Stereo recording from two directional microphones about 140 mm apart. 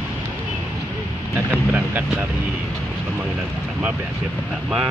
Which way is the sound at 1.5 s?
10° right (ahead or behind).